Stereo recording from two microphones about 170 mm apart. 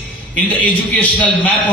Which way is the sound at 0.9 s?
10° left (ahead or behind).